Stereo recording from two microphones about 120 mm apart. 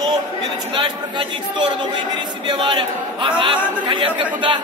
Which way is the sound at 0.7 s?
40° right (ahead or behind).